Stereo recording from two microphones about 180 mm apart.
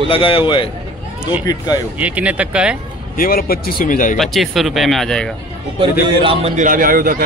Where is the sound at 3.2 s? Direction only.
55° left (ahead or behind).